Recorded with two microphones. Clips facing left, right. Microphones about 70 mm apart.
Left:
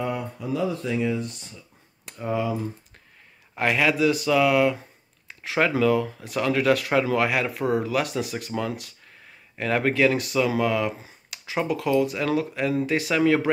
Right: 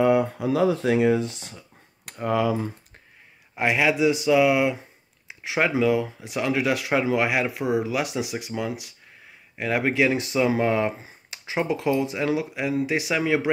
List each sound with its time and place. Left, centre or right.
0.0 s speech: right
2.0 s computer keyboard: right
2.3 s speech: right
3.5 s speech: centre